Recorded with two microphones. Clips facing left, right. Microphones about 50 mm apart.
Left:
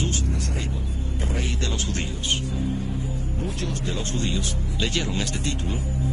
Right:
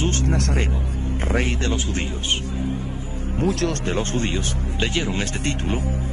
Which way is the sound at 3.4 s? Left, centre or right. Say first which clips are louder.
Right 10 dB; right.